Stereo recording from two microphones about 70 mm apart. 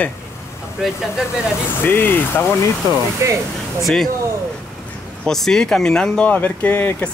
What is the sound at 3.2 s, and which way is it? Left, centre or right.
Speech, right.